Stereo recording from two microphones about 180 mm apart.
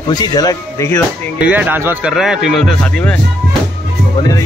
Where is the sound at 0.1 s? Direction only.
20° left (ahead or behind).